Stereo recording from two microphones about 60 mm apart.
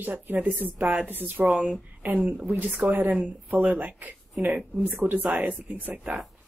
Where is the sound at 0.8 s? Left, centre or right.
Centre.